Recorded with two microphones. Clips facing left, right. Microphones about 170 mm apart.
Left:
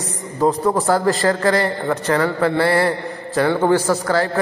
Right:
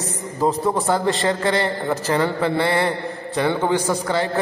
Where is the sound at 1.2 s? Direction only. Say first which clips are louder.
Left 3 dB; 15° right (ahead or behind).